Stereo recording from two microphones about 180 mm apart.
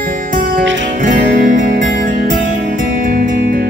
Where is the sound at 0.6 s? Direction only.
90° right.